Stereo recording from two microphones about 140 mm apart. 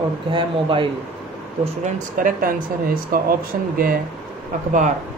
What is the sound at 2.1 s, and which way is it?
Speech, 80° right.